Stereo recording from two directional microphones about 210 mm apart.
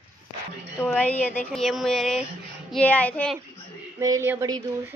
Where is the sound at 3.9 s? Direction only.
15° right (ahead or behind).